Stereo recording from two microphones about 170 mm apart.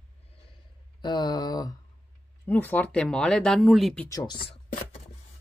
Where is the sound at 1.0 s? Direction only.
25° left (ahead or behind).